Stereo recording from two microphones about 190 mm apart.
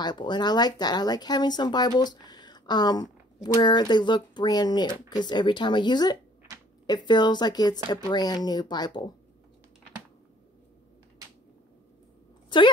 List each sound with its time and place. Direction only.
0.0 s speech: 25° left (ahead or behind)